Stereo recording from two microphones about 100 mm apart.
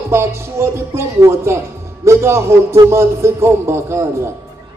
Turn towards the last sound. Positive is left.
turn(degrees=-25)  # may be behind; listen again after turning